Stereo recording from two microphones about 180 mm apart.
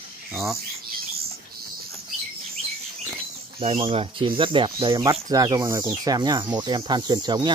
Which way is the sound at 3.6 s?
30° right (ahead or behind).